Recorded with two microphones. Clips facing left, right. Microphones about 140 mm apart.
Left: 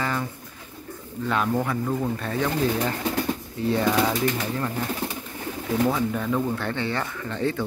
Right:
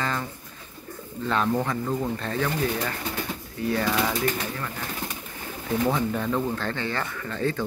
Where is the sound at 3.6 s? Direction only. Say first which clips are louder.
Left 3 dB; 20° left (ahead or behind).